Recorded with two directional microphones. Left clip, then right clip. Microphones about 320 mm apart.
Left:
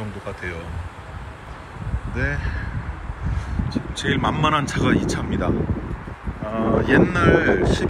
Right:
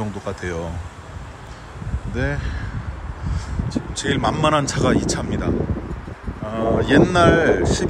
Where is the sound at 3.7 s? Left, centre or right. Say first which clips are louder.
Right 1 dB; centre.